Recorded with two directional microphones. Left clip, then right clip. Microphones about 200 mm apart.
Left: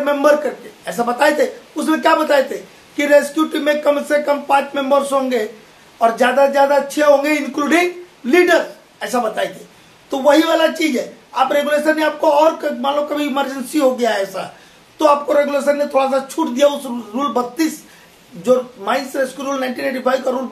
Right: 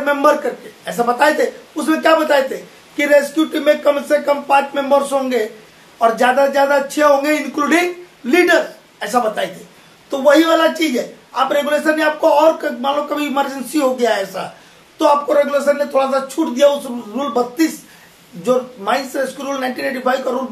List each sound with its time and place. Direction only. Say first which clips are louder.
0.0 s a man's voice: even; 5° left (ahead or behind)